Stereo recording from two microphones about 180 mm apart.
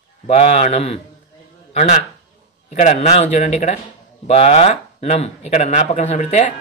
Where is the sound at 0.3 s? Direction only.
35° left (ahead or behind).